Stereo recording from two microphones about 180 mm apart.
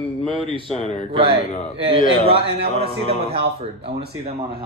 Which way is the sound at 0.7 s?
40° left (ahead or behind).